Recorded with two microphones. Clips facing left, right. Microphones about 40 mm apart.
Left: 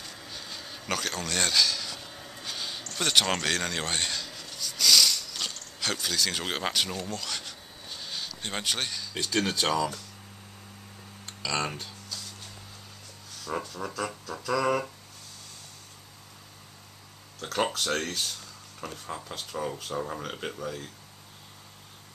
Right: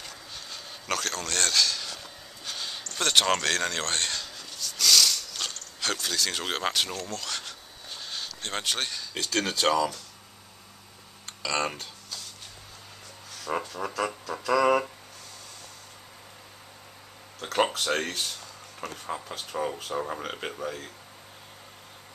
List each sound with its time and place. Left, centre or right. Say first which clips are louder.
0.3 s a sound: left 2 dB; centre
9.1 s speech: left 1 dB; centre
11.4 s speech: right 2 dB; centre
13.5 s speech: right 3 dB; right
13.9 s music: right 5 dB; right
17.4 s speech: right 3 dB; right